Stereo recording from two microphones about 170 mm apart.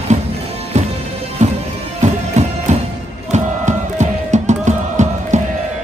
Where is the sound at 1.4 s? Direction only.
40° right (ahead or behind).